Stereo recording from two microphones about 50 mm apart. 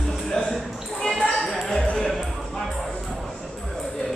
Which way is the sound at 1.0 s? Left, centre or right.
Centre.